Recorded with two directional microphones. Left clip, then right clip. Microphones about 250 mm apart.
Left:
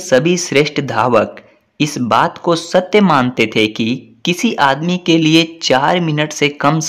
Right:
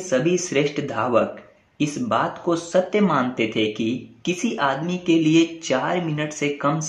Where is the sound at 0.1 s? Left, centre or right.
Left.